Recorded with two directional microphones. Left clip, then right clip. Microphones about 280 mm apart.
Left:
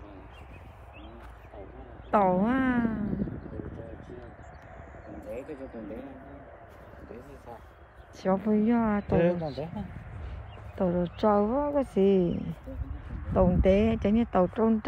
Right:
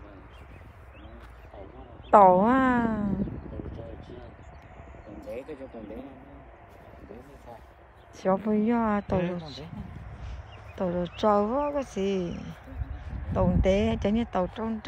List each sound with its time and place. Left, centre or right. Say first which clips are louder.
2.0 s speech: right 7 dB; centre
3.1 s a sound: right 2 dB; centre
5.3 s speech: right 1 dB; centre
7.1 s speech: left 1 dB; centre